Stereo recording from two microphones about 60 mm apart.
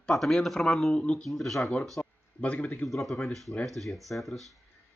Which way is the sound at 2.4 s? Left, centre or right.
Left.